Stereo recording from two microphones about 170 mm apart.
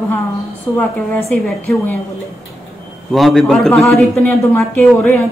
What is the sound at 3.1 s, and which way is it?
A man's voice, centre (ahead or behind).